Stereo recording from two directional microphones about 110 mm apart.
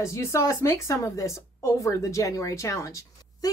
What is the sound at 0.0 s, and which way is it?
Speech, 25° left (ahead or behind).